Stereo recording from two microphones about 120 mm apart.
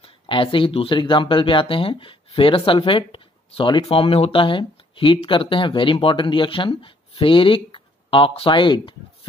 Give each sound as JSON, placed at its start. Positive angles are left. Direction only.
{"t": 0.0, "sound": "speech", "side_deg": 45}